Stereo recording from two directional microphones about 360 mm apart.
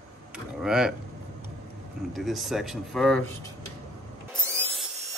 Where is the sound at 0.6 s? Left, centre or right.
Centre.